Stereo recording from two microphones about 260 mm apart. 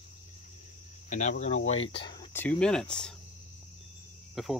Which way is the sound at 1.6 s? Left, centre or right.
Left.